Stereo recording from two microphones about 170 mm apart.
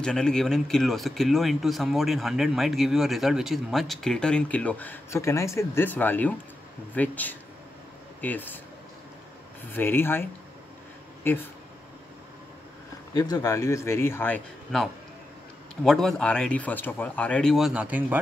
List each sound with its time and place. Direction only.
0.0 s a man's voice: 5° left (ahead or behind)
9.7 s a man's voice: 10° left (ahead or behind)
11.3 s a man's voice: 15° left (ahead or behind)
13.1 s a man's voice: 20° left (ahead or behind); by 18.2 s 10° right (ahead or behind)